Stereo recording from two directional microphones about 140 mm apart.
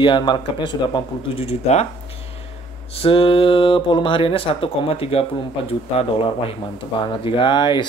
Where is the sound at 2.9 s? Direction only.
45° left (ahead or behind).